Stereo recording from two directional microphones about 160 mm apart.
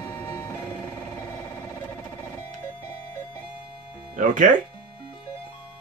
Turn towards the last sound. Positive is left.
turn(degrees=-55)  # may be behind; listen again after turning